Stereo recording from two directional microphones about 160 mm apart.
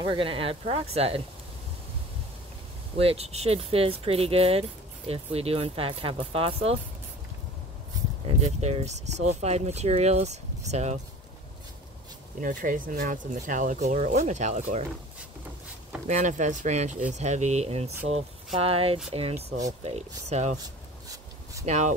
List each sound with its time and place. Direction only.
0.0 s speech: 30° right (ahead or behind)
3.0 s speech: 40° right (ahead or behind)
8.4 s speech: 45° right (ahead or behind)
12.4 s speech: 55° right (ahead or behind)
16.1 s speech: 50° right (ahead or behind)
21.6 s speech: 45° right (ahead or behind)